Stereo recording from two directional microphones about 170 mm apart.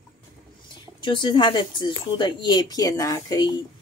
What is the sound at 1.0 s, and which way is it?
Speech, 25° left (ahead or behind).